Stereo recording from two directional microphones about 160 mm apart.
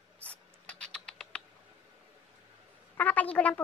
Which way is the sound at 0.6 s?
5° left (ahead or behind).